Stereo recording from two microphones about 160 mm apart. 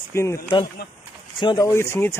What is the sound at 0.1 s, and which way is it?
Speech, 15° left (ahead or behind).